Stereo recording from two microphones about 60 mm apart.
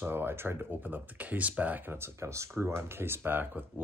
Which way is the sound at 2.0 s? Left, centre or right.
Right.